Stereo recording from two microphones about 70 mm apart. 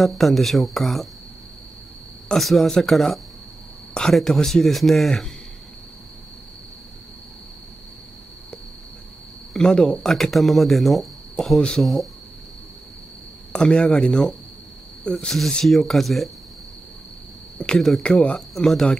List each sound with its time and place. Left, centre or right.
0.0 s speech: centre
2.2 s speech: centre
9.5 s speech: centre
13.5 s speech: centre
17.6 s speech: centre
18.0 s speech: centre
18.5 s speech: centre